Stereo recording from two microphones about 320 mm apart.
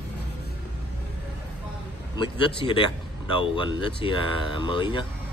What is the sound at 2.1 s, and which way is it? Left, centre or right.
A man's voice, centre.